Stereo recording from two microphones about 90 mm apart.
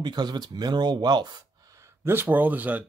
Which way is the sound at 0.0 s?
50° right (ahead or behind).